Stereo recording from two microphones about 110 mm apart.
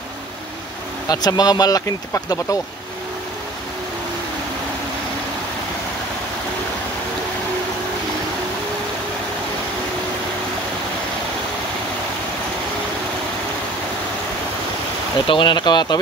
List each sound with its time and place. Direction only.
1.0 s speech: 35° left (ahead or behind)
15.2 s speech: 50° left (ahead or behind)